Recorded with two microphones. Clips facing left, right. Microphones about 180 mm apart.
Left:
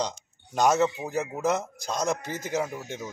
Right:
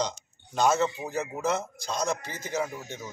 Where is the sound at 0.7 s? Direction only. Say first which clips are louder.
Left 3 dB; 5° left (ahead or behind).